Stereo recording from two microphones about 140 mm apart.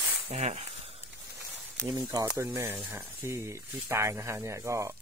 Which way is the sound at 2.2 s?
15° right (ahead or behind).